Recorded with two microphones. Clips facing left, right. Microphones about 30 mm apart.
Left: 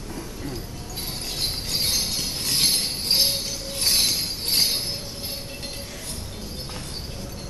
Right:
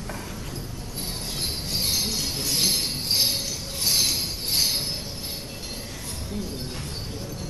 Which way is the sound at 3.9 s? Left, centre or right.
Left.